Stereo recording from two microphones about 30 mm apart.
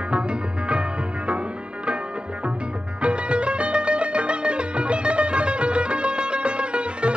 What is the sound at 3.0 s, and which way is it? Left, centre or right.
Music, right.